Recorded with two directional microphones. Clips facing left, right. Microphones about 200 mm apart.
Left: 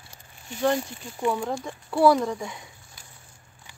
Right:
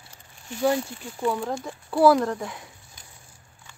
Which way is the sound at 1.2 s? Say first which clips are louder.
Even; 20° left (ahead or behind).